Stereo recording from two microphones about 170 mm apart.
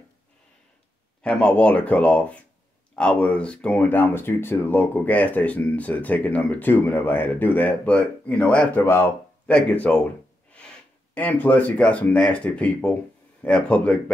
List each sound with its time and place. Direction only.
1.2 s speech: 5° left (ahead or behind)
11.1 s speech: 10° left (ahead or behind)